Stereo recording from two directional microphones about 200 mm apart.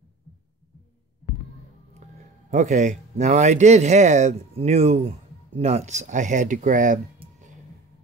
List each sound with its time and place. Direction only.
2.5 s speech: 35° right (ahead or behind)
7.2 s music: 35° right (ahead or behind)